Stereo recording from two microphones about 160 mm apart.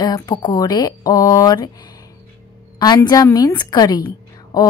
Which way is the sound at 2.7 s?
25° left (ahead or behind).